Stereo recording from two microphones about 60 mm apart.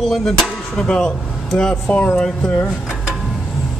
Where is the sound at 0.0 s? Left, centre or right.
Centre.